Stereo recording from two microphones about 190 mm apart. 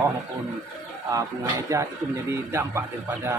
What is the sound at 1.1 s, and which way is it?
Speech, 15° right (ahead or behind).